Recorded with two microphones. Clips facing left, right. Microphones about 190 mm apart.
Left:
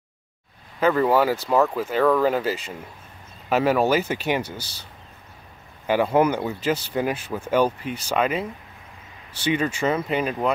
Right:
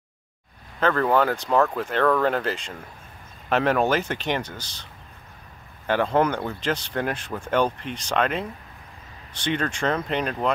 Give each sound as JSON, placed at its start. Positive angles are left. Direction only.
{"t": 0.7, "sound": "speech", "side_deg": 5}
{"t": 5.9, "sound": "speech", "side_deg": 10}